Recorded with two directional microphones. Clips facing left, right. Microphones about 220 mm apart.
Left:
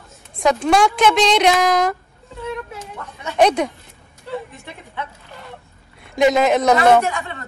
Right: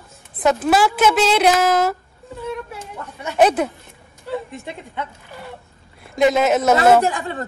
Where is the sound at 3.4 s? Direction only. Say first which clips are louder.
Even; 5° right (ahead or behind).